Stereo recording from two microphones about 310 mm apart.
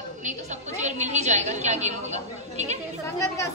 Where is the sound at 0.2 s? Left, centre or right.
Right.